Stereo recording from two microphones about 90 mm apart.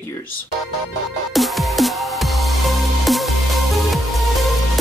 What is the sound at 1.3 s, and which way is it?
Music, centre (ahead or behind).